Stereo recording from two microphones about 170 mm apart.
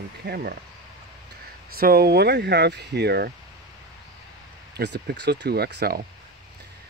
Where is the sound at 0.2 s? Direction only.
65° right (ahead or behind).